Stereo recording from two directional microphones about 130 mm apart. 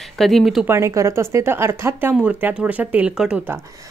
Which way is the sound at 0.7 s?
20° right (ahead or behind).